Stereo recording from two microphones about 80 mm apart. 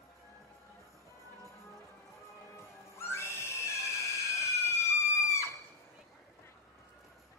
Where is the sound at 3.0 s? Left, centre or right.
Left.